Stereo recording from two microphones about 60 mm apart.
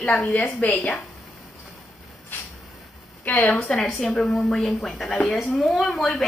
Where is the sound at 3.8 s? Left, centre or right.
Centre.